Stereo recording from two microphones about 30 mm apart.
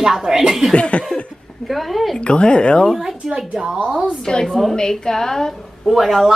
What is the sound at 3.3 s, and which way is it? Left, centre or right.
Speech, centre.